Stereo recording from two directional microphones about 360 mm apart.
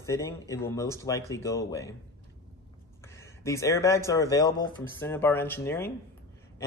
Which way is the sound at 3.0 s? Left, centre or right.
Centre.